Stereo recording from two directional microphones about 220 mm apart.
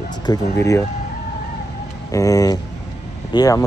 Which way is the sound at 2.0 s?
15° left (ahead or behind).